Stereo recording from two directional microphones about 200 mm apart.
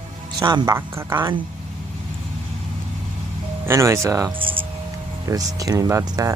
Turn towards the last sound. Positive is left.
turn(degrees=-20)  # may be behind; listen again after turning